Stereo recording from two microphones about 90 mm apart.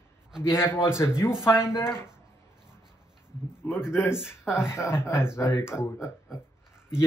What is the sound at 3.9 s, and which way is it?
Speech, 30° left (ahead or behind).